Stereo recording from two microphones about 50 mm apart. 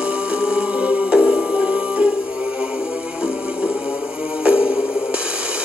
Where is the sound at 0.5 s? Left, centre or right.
Centre.